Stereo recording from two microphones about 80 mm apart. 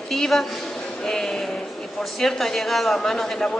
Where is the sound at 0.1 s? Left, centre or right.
Centre.